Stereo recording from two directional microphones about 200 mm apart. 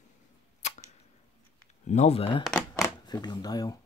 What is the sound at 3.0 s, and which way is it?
Speech, 20° left (ahead or behind).